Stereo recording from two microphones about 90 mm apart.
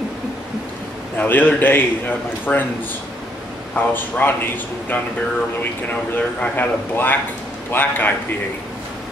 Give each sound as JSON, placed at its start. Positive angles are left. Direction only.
{"t": 1.1, "sound": "a man's voice", "side_deg": 20}
{"t": 3.7, "sound": "a man's voice", "side_deg": 20}
{"t": 6.1, "sound": "a man's voice", "side_deg": 20}